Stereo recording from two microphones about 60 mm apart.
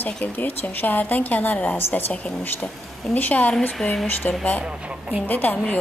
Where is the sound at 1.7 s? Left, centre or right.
Left.